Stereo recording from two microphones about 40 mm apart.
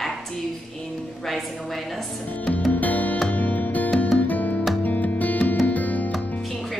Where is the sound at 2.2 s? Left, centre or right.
Left.